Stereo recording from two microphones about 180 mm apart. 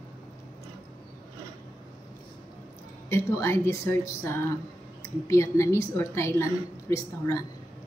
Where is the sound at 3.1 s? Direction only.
15° left (ahead or behind).